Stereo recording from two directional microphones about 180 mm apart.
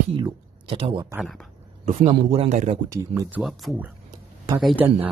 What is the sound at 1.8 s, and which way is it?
Speech, 35° right (ahead or behind).